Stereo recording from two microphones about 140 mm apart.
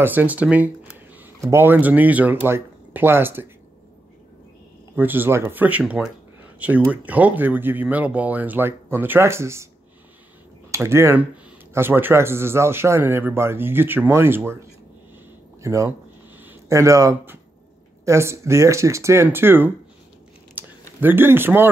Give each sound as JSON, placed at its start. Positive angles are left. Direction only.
{"t": 0.0, "sound": "speech", "side_deg": -15}
{"t": 4.9, "sound": "speech", "side_deg": -15}
{"t": 10.7, "sound": "speech", "side_deg": -20}
{"t": 15.6, "sound": "speech", "side_deg": -20}
{"t": 20.6, "sound": "a sound", "side_deg": -10}
{"t": 21.0, "sound": "speech", "side_deg": -15}